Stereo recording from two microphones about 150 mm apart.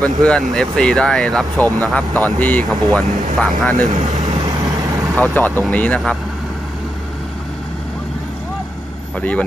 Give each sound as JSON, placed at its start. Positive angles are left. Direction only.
{"t": 0.0, "sound": "speech", "side_deg": 5}
{"t": 3.8, "sound": "speech", "side_deg": -55}
{"t": 4.5, "sound": "vehicle", "side_deg": -25}
{"t": 5.1, "sound": "speech", "side_deg": 10}